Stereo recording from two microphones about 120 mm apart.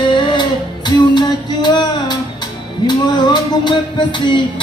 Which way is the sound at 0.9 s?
40° left (ahead or behind).